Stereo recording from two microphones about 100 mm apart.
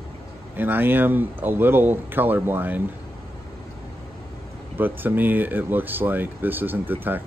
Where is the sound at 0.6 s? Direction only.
20° right (ahead or behind).